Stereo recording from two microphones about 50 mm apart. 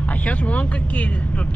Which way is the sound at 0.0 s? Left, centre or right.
Left.